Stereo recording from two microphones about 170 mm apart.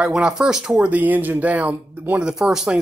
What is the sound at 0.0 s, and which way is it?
Speech, 5° right (ahead or behind).